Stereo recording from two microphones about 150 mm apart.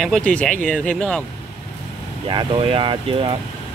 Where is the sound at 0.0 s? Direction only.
5° left (ahead or behind).